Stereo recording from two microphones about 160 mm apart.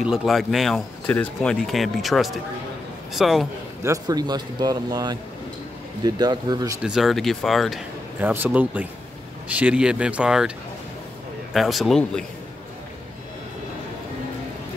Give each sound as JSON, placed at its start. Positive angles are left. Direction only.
{"t": 0.0, "sound": "speech", "side_deg": 0}
{"t": 3.8, "sound": "a man's voice", "side_deg": -20}
{"t": 6.8, "sound": "speech", "side_deg": -5}
{"t": 8.2, "sound": "speech", "side_deg": -10}
{"t": 11.5, "sound": "speech", "side_deg": 0}